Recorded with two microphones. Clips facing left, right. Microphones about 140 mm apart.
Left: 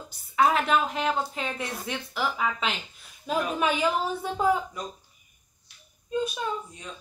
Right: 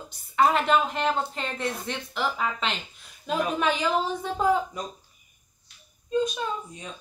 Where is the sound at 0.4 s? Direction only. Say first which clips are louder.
Right 1 dB; centre (ahead or behind).